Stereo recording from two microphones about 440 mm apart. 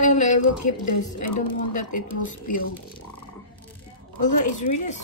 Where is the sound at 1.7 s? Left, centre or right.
Left.